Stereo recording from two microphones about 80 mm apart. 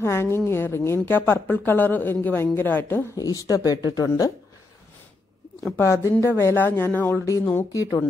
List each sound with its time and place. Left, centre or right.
0.0 s speech: left
3.2 s speech: left
5.8 s speech: left
7.2 s speech: left